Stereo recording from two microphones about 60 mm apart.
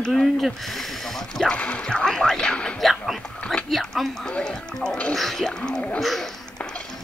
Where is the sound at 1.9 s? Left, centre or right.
Centre.